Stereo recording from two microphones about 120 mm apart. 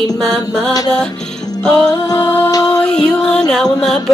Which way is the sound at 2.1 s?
20° left (ahead or behind).